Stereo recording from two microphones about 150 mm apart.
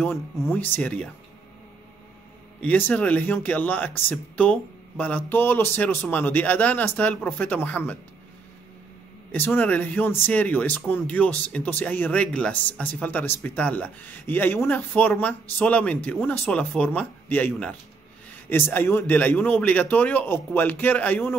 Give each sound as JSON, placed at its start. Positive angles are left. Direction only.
{"t": 0.0, "sound": "speech", "side_deg": 15}
{"t": 2.6, "sound": "speech", "side_deg": 10}
{"t": 9.3, "sound": "speech", "side_deg": 10}